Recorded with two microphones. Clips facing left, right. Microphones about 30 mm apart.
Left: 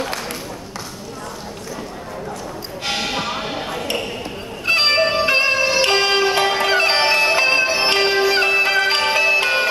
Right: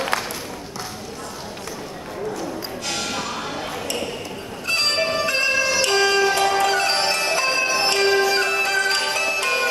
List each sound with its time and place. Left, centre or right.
2.8 s music: left